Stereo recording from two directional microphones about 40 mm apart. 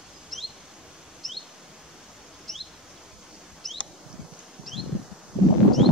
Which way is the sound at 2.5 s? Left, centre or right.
Centre.